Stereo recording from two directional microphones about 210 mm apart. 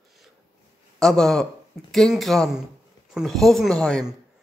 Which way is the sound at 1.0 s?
Centre (ahead or behind).